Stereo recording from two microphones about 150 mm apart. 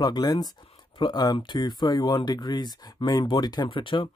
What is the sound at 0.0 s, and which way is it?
Speech, 25° left (ahead or behind).